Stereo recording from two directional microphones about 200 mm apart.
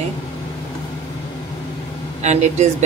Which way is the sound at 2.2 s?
35° right (ahead or behind).